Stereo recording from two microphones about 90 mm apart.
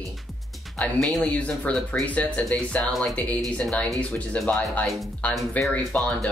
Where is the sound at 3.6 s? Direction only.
5° left (ahead or behind).